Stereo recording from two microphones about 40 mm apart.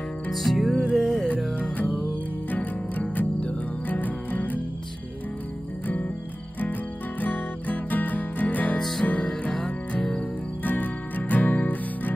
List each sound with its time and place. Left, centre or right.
0.3 s music: centre
2.5 s music: left
5.9 s music: left
10.6 s music: left